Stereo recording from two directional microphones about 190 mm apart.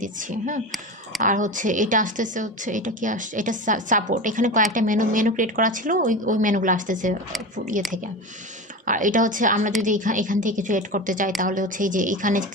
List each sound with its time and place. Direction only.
0.0 s a woman's voice: 40° right (ahead or behind)
8.8 s a woman's voice: 45° right (ahead or behind)